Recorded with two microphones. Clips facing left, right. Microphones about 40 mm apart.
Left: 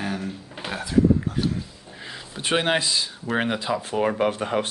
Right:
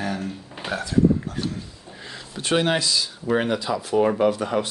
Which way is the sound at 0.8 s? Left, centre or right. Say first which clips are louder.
Even; centre.